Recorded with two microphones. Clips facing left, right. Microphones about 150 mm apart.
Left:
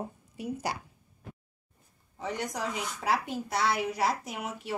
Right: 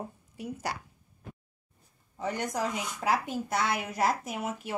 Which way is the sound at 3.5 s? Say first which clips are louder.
Left 3 dB; 50° right (ahead or behind).